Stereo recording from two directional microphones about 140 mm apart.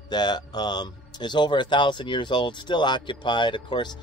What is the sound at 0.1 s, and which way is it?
Speech, 30° left (ahead or behind).